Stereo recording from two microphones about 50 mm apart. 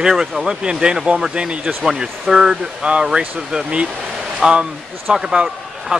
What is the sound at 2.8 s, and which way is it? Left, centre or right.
A man's voice, centre.